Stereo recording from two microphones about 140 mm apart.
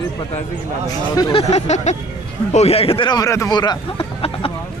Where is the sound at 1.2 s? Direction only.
35° left (ahead or behind).